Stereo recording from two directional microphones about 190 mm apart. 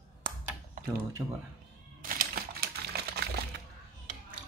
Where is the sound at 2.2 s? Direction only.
50° right (ahead or behind).